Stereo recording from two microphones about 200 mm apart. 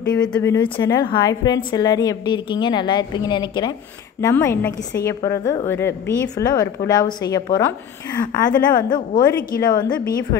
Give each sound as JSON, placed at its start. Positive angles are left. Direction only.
{"t": 0.1, "sound": "speech", "side_deg": 5}
{"t": 0.6, "sound": "a woman's voice", "side_deg": 20}
{"t": 8.5, "sound": "a woman's voice", "side_deg": 45}
{"t": 8.8, "sound": "a woman's voice", "side_deg": 20}
{"t": 9.5, "sound": "a woman's voice", "side_deg": 45}